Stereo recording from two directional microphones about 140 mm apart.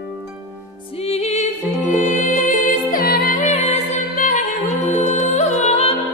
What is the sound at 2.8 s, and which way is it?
Music, 90° left.